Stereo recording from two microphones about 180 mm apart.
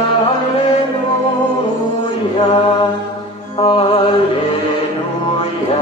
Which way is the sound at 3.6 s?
30° left (ahead or behind).